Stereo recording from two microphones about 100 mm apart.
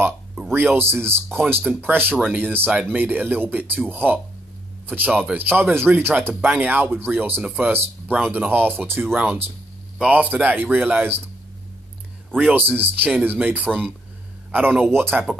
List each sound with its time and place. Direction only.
0.5 s speech: 20° right (ahead or behind)
12.4 s speech: 20° right (ahead or behind)
13.7 s speech: 5° left (ahead or behind)
14.5 s speech: 15° right (ahead or behind)